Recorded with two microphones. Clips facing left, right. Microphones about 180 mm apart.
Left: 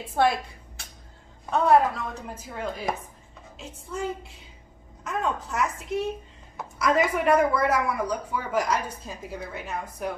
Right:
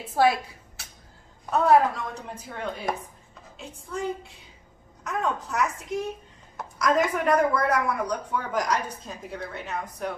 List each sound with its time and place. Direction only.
0.1 s a woman's voice: centre (ahead or behind)